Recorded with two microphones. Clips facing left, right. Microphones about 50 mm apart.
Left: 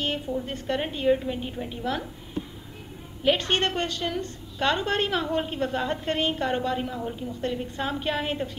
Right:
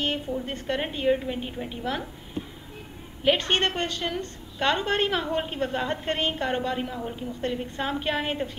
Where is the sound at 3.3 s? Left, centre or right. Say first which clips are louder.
Even; right.